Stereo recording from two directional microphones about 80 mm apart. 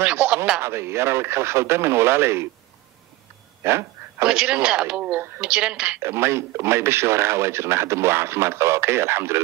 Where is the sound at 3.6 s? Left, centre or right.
Right.